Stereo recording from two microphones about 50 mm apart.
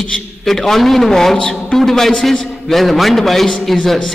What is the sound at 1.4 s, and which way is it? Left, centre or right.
Speech, left.